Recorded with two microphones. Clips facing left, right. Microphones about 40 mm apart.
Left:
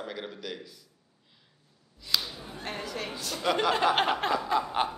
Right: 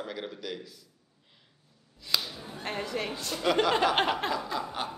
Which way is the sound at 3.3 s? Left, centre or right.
Centre.